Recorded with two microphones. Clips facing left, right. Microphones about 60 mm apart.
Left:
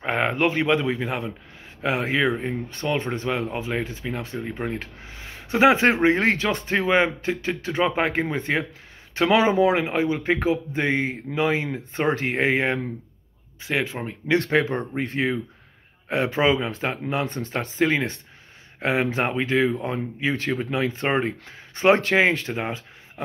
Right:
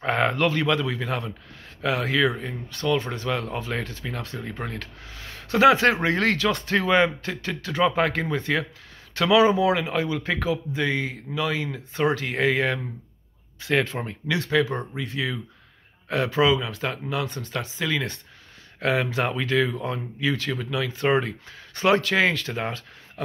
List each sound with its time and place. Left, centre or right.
0.0 s a man's voice: centre
13.6 s speech: centre
14.5 s a man's voice: left